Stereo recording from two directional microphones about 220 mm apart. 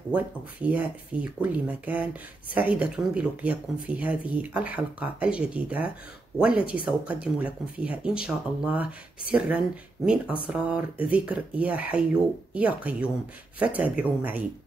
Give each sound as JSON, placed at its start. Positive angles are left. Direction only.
{"t": 0.1, "sound": "speech", "side_deg": -5}
{"t": 10.0, "sound": "speech", "side_deg": -5}